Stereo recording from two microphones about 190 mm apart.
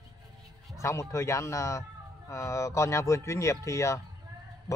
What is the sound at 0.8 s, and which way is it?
Speech, 15° left (ahead or behind).